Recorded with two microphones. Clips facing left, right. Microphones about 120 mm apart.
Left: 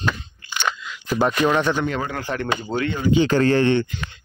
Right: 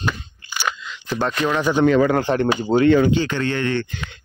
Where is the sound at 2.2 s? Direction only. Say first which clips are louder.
Right 6 dB; 30° right (ahead or behind).